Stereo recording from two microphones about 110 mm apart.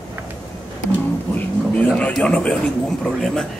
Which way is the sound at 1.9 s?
10° left (ahead or behind).